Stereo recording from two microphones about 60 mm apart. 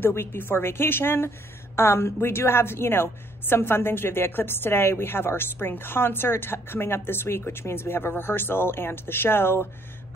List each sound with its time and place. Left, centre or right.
0.0 s a woman's voice: left